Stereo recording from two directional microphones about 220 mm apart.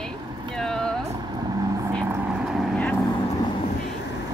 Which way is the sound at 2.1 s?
5° right (ahead or behind).